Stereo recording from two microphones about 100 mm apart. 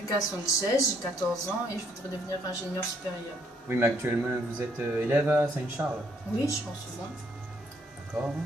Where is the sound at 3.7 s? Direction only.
20° right (ahead or behind).